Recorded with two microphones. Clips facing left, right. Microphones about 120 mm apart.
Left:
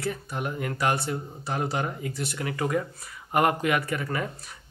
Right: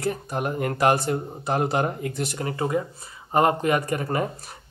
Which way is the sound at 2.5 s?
25° right (ahead or behind).